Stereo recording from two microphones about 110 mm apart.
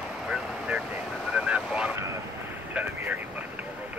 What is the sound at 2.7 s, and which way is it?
Vehicle, 15° right (ahead or behind).